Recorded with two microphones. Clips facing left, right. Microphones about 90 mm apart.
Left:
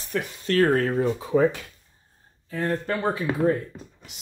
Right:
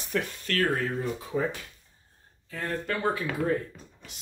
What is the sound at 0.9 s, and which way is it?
Speech, 90° left.